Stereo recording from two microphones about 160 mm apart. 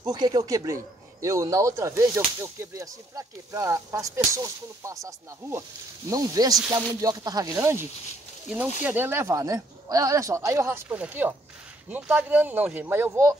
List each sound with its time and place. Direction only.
0.0 s speech: 25° right (ahead or behind)
8.8 s speech: 15° right (ahead or behind)